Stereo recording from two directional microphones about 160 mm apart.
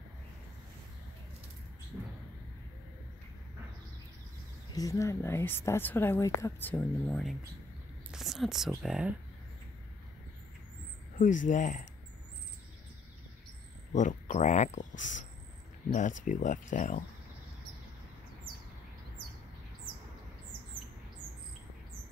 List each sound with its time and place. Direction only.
1.9 s a sound: 10° right (ahead or behind)
4.7 s a woman's voice: 20° left (ahead or behind); by 9.1 s 5° right (ahead or behind)
11.1 s speech: 55° left (ahead or behind)
13.9 s speech: 50° left (ahead or behind)